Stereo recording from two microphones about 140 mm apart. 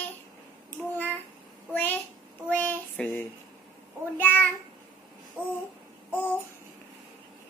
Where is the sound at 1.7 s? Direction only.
10° left (ahead or behind).